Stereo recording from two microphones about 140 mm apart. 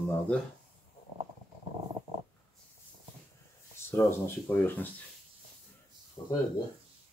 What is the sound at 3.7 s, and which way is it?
Speech, 20° left (ahead or behind).